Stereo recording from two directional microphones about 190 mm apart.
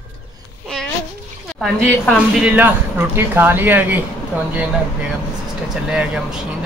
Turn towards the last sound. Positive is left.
turn(degrees=-5)  # may be behind; listen again after turning